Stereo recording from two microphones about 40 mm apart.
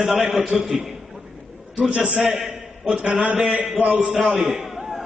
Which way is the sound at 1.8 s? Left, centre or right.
Right.